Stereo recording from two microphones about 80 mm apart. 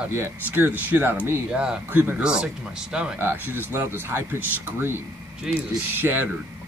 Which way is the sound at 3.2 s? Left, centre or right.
Right.